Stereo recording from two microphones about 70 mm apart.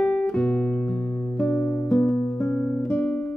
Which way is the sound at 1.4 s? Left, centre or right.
Centre.